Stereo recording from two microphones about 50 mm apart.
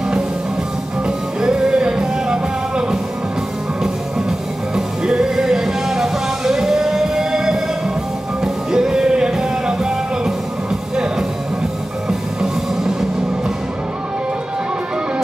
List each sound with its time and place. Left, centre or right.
1.0 s music: centre
4.7 s music: centre
12.1 s music: centre